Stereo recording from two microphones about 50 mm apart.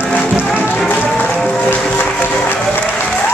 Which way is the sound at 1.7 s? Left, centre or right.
Left.